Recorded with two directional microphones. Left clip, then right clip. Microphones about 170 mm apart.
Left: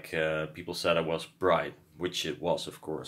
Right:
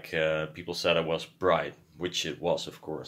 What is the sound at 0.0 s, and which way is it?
Speech, centre (ahead or behind).